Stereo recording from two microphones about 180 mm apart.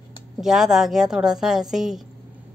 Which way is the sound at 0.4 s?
5° right (ahead or behind).